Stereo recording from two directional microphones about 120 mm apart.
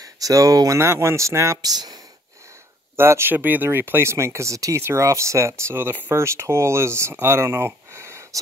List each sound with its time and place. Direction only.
0.2 s speech: 30° right (ahead or behind)
3.0 s speech: 20° right (ahead or behind)